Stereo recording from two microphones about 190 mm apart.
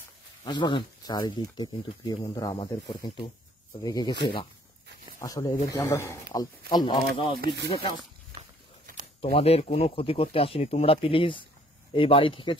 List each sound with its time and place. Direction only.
0.4 s speech: 25° left (ahead or behind)
3.8 s speech: 20° left (ahead or behind)
5.2 s speech: 20° left (ahead or behind)
7.3 s speech: 55° right (ahead or behind)
9.2 s speech: 30° left (ahead or behind)